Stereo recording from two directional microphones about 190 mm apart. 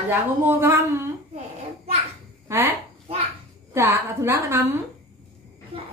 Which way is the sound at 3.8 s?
15° right (ahead or behind).